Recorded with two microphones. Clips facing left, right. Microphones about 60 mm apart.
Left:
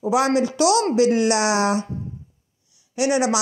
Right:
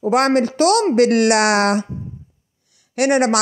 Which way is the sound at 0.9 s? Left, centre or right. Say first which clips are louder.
Right 4 dB; right.